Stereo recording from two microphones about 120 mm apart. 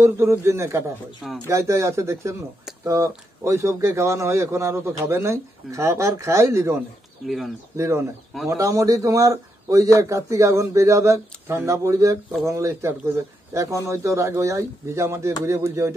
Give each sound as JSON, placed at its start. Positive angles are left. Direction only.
{"t": 0.0, "sound": "speech", "side_deg": -25}
{"t": 7.2, "sound": "speech", "side_deg": 0}
{"t": 7.7, "sound": "speech", "side_deg": -25}